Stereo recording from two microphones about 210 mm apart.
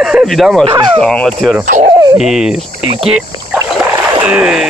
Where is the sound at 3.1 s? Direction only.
5° right (ahead or behind).